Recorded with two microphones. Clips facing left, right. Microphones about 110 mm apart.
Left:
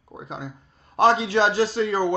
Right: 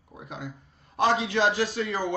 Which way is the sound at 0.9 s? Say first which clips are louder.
Left 5 dB; 40° left (ahead or behind).